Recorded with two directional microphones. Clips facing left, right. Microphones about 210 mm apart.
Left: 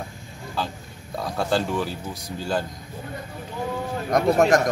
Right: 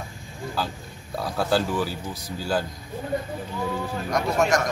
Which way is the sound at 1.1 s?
Centre (ahead or behind).